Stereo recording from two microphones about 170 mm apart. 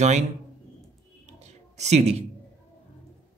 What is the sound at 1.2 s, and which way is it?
Writing, 40° right (ahead or behind).